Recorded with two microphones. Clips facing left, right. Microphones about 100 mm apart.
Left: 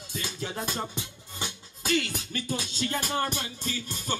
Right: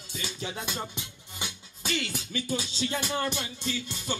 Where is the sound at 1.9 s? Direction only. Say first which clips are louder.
Left 4 dB; 50° left (ahead or behind).